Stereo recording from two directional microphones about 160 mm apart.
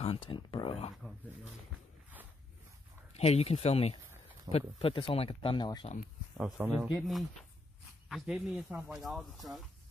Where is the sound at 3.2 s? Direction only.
40° left (ahead or behind).